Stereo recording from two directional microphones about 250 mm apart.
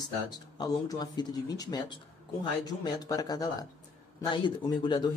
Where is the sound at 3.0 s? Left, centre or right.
Centre.